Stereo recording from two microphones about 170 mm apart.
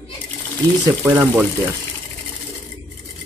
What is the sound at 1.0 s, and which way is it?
Speech, 10° right (ahead or behind).